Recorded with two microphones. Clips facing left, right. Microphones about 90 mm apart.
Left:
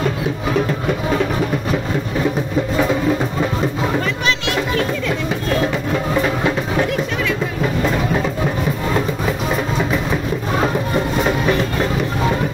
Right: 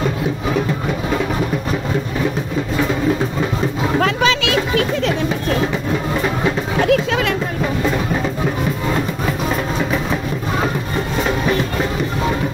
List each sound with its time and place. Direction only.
4.0 s speech: 90° right
6.9 s speech: 90° right